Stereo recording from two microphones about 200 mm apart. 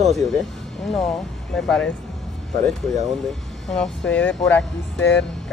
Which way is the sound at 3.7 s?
5° left (ahead or behind).